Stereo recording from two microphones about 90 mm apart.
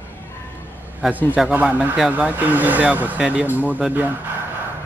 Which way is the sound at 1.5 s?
15° right (ahead or behind).